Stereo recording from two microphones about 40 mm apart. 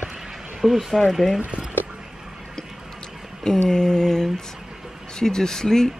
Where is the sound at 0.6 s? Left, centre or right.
Centre.